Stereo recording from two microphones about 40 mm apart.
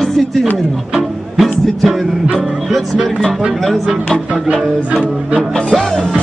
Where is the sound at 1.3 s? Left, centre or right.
Centre.